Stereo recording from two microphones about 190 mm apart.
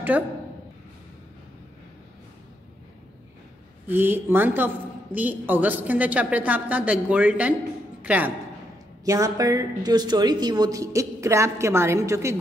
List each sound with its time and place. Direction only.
0.1 s speech: 5° right (ahead or behind)
3.8 s speech: 10° right (ahead or behind)